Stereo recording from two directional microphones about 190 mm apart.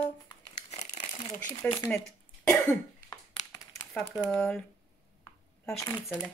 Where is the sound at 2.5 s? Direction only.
15° left (ahead or behind).